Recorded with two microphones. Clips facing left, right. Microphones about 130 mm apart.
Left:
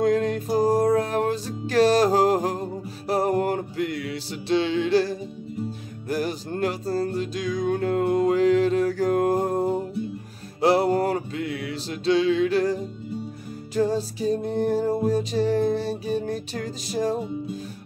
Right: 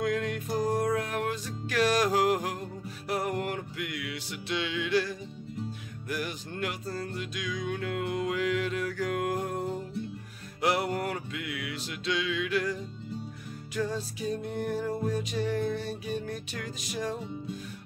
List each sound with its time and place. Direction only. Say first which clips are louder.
0.0 s music: left 8 dB; 35° left (ahead or behind)